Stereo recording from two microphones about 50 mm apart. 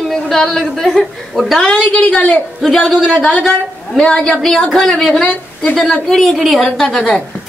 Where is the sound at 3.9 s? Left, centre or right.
Centre.